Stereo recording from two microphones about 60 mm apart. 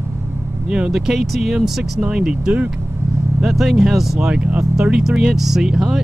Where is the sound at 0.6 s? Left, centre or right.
Centre.